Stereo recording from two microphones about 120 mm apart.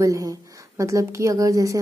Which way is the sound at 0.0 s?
30° right (ahead or behind).